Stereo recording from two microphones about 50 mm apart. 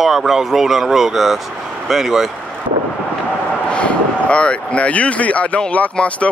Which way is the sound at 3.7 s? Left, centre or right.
Left.